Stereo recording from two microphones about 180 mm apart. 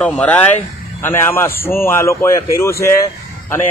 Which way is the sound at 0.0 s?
5° left (ahead or behind).